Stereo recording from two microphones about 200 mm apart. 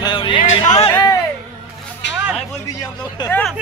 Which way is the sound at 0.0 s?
25° left (ahead or behind).